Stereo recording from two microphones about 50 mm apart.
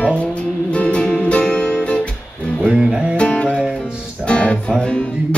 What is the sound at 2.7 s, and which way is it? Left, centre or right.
Music, centre.